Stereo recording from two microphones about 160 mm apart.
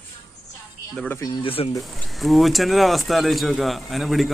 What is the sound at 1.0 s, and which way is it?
Speech, 15° left (ahead or behind).